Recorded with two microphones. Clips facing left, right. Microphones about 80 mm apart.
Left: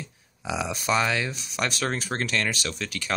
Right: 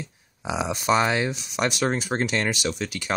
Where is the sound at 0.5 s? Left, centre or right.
Right.